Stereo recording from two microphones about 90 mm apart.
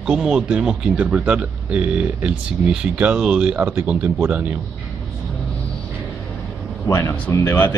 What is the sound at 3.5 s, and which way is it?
Speech, 25° right (ahead or behind).